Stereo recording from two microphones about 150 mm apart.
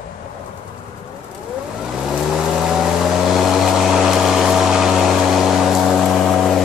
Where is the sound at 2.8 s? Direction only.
Centre (ahead or behind).